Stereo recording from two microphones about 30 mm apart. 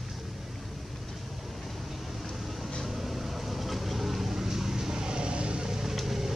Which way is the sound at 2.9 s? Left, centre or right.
Centre.